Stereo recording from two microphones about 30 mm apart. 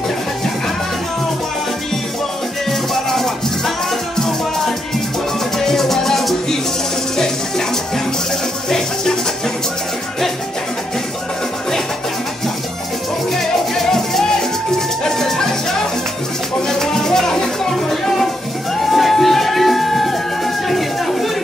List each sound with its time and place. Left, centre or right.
2.9 s music: centre
5.6 s music: centre
8.6 s music: centre
13.4 s music: centre
16.6 s music: centre